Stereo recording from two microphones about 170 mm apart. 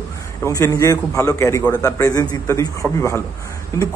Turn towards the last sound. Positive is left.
turn(degrees=15)  # may be behind; listen again after turning